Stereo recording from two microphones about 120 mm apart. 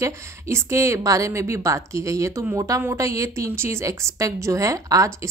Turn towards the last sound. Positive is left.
turn(degrees=-30)  # may be behind; listen again after turning